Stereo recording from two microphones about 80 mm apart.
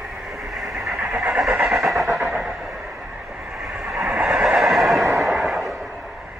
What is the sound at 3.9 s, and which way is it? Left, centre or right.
Neigh, centre.